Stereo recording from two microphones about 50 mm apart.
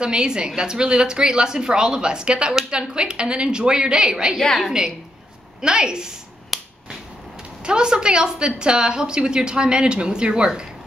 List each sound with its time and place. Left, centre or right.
0.0 s a woman's voice: centre
5.6 s a woman's voice: centre
6.5 s finger snapping: centre
7.6 s a woman's voice: centre